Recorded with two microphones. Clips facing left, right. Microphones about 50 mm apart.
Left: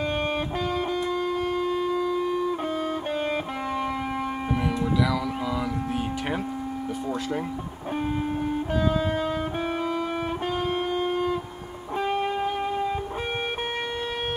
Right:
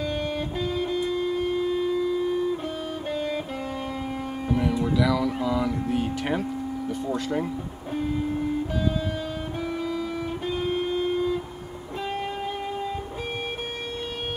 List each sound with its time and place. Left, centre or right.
0.0 s music: left
2.5 s music: left
4.6 s speech: centre
8.7 s music: left